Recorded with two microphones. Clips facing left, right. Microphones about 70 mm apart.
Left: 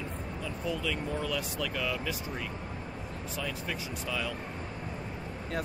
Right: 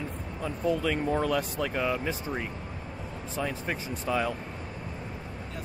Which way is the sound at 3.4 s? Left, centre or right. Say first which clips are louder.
Right 5 dB; right.